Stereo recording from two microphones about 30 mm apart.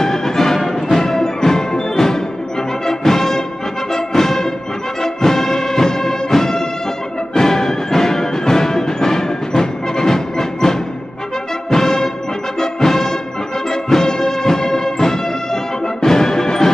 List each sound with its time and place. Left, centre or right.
0.0 s music: centre